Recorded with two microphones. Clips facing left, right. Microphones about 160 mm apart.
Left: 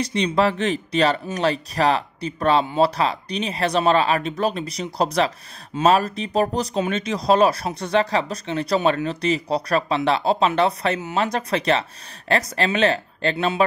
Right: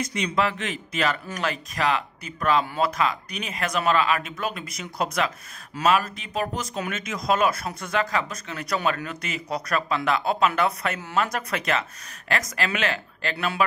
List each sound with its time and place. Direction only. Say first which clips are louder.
0.0 s speech: left 5 dB; 30° left (ahead or behind)
2.6 s speech: left 5 dB; 20° left (ahead or behind)